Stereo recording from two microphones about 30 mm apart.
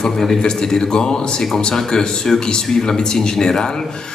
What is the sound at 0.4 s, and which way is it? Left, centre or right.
A man's voice, left.